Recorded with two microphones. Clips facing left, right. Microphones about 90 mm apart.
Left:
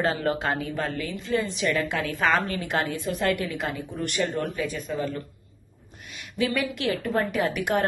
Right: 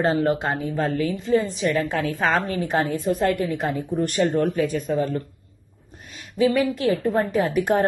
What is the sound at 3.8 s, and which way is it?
Speech, 45° right (ahead or behind).